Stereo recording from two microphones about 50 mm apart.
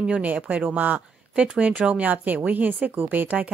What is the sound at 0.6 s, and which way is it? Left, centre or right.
A woman's voice, right.